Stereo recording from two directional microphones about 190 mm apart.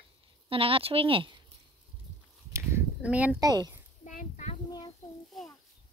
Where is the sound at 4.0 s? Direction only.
40° left (ahead or behind).